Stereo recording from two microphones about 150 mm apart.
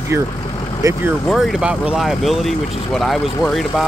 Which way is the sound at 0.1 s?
20° right (ahead or behind).